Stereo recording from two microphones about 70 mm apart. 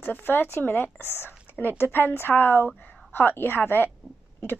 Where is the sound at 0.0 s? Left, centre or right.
Left.